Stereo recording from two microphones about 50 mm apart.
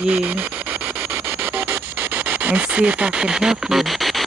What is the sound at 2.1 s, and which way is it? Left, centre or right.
Speech, right.